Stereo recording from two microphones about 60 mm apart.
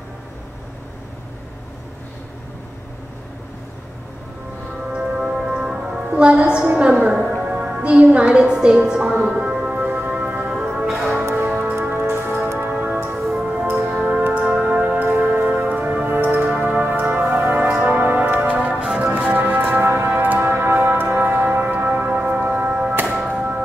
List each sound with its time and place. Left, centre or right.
5.1 s music: centre
12.1 s music: right
12.7 s music: centre
16.8 s music: right
21.2 s tick-tock: right
23.2 s music: right